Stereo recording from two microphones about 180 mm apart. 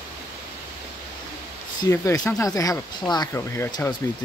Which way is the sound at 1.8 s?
20° left (ahead or behind).